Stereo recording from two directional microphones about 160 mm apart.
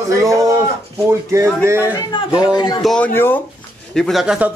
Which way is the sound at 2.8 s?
5° left (ahead or behind).